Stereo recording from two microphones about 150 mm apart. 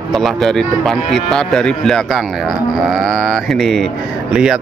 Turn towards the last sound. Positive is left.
turn(degrees=-5)  # may be behind; listen again after turning